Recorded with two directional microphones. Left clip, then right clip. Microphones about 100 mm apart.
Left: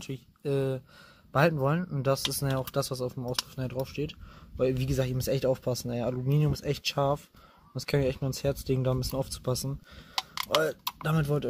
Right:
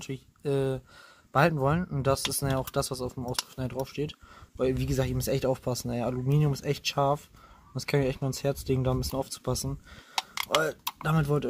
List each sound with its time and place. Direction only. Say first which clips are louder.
0.0 s speech: right 1 dB; 20° left (ahead or behind)
11.1 s speech: right 2 dB; 10° left (ahead or behind)